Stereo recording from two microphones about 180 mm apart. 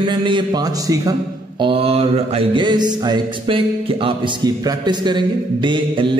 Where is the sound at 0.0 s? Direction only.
25° right (ahead or behind).